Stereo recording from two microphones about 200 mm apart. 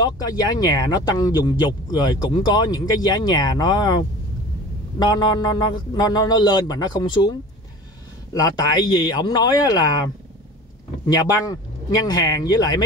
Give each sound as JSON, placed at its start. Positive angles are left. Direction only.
{"t": 0.0, "sound": "speech", "side_deg": 20}
{"t": 11.1, "sound": "speech", "side_deg": 20}